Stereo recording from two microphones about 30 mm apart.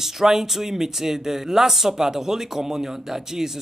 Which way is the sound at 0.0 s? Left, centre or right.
Centre.